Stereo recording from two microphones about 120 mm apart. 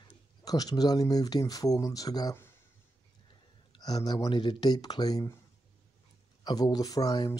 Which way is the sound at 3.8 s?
35° left (ahead or behind).